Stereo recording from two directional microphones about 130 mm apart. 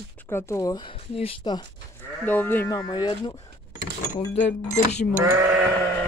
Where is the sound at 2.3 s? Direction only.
15° left (ahead or behind).